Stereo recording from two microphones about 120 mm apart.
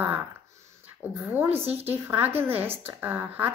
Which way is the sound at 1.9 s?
15° right (ahead or behind).